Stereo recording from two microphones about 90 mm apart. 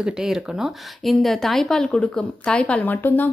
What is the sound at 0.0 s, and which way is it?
A woman's voice, 5° right (ahead or behind).